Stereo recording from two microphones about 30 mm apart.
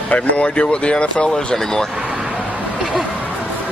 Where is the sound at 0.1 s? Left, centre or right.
Left.